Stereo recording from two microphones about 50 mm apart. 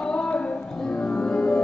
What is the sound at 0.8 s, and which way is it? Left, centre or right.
Music, centre.